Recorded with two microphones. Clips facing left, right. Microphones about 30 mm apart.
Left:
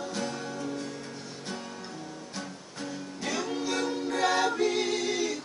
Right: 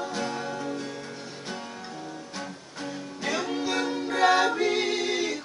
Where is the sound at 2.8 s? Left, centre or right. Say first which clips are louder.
Right 2 dB; centre.